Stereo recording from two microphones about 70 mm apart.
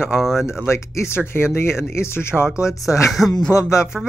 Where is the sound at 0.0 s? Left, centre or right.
Centre.